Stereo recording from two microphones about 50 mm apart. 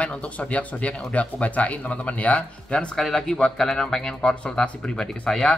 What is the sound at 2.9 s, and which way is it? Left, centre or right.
Speech, centre.